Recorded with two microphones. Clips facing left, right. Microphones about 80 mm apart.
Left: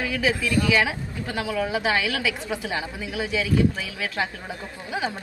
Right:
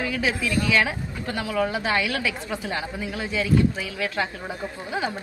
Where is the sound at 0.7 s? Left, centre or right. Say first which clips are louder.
Even; centre.